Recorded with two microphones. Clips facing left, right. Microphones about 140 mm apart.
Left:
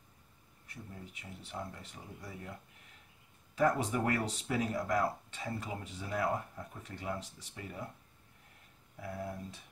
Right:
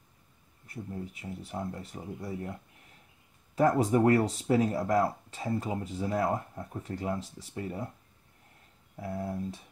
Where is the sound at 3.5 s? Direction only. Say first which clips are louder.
Right 6 dB; 35° right (ahead or behind).